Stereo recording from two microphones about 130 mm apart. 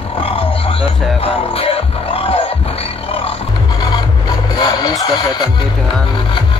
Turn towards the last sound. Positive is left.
turn(degrees=35)  # may be behind; listen again after turning